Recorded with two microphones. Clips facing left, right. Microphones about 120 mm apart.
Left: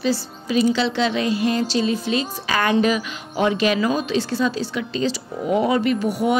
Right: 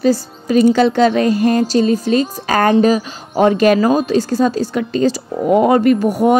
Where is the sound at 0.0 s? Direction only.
45° right (ahead or behind).